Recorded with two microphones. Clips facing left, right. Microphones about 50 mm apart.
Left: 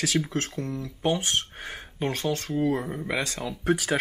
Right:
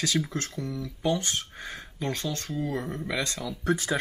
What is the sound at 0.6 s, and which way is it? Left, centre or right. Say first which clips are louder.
Speech: left 2 dB; centre.